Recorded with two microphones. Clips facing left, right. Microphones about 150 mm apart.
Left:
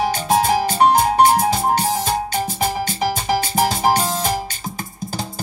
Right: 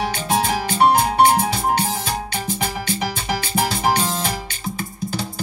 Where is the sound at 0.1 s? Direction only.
45° left (ahead or behind).